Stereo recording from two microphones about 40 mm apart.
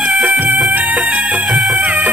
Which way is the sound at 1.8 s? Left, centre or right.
Right.